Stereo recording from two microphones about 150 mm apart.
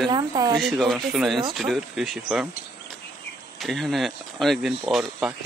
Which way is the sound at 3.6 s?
Centre (ahead or behind).